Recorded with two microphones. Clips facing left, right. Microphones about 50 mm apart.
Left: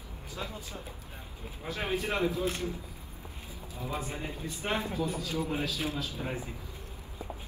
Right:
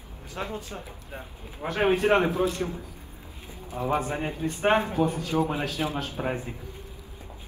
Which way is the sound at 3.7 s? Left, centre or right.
Right.